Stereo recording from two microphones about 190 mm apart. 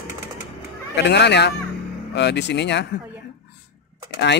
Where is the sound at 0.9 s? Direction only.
65° left (ahead or behind).